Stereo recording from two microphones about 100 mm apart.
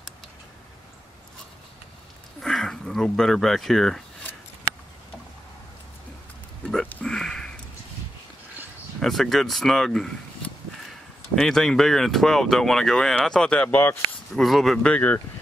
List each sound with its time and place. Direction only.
2.4 s speech: 5° left (ahead or behind)
6.9 s a sound: 10° left (ahead or behind)
9.0 s speech: 5° left (ahead or behind)
11.3 s speech: 5° left (ahead or behind)
14.3 s speech: centre (ahead or behind)
14.9 s speech: 15° left (ahead or behind)